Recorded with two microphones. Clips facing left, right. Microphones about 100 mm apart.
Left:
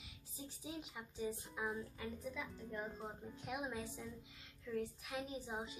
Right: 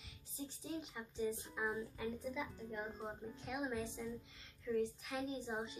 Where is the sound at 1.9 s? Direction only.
20° right (ahead or behind).